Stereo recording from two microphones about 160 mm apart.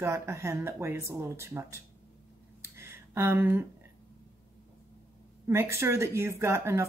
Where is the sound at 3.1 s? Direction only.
15° right (ahead or behind).